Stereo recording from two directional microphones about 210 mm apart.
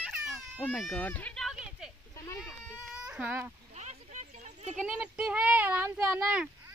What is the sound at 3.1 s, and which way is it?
Speech, 10° right (ahead or behind).